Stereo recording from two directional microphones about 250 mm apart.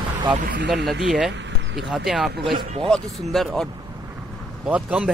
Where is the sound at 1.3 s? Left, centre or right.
Right.